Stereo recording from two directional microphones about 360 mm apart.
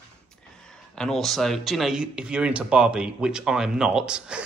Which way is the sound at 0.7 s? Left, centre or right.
Centre.